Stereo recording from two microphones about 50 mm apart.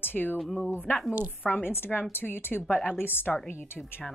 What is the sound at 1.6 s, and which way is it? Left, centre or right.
Speech, left.